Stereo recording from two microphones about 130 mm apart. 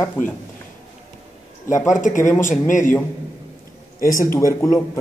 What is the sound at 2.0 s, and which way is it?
Speech, 80° left.